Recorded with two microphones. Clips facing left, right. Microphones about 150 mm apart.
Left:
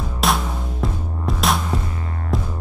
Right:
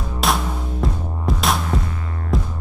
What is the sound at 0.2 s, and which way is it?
Music, centre (ahead or behind).